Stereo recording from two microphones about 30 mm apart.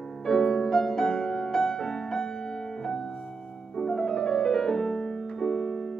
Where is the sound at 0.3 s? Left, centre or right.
Centre.